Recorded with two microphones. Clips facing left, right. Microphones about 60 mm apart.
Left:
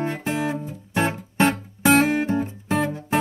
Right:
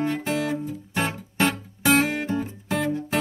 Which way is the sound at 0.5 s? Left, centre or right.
Left.